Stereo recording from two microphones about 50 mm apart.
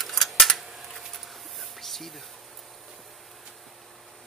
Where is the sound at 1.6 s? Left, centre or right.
Centre.